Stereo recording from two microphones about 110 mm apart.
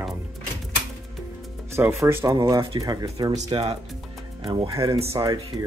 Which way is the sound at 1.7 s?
25° right (ahead or behind).